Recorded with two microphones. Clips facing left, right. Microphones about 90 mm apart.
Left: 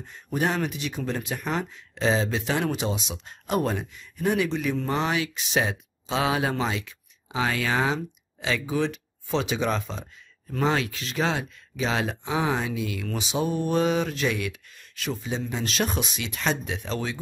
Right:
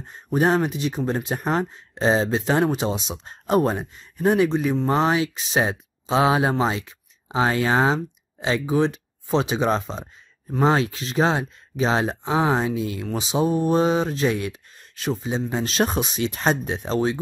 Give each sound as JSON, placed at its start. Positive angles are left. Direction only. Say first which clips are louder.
{"t": 0.0, "sound": "speech", "louder": "right 6 dB", "side_deg": -35}